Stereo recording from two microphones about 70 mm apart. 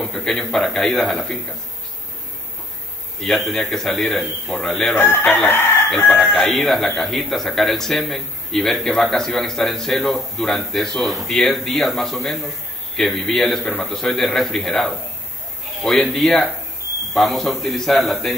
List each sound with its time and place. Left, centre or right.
0.0 s a man's voice: centre
3.2 s a man's voice: centre
4.9 s speech: left
5.9 s chicken: left
6.3 s a man's voice: centre